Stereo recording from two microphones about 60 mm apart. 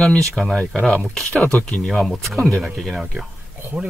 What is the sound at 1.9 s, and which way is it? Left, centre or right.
Speech, centre.